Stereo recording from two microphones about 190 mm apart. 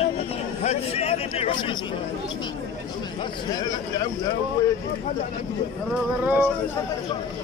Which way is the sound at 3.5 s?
20° left (ahead or behind).